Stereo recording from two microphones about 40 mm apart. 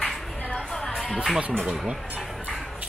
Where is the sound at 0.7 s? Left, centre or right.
Centre.